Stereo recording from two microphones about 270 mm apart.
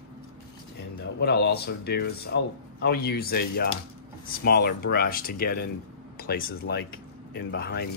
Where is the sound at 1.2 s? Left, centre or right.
Left.